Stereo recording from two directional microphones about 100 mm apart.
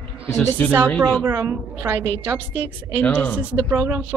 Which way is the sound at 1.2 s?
30° right (ahead or behind).